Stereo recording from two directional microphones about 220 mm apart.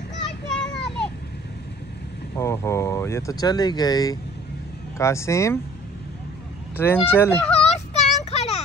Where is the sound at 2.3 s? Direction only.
15° left (ahead or behind).